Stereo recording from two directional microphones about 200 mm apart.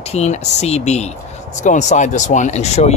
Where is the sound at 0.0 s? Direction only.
35° left (ahead or behind).